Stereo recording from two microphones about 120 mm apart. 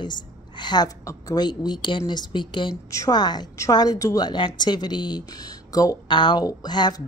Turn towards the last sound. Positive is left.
turn(degrees=35)  # may be behind; listen again after turning